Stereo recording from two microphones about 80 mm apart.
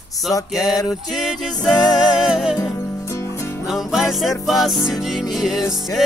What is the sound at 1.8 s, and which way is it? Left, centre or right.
Music, left.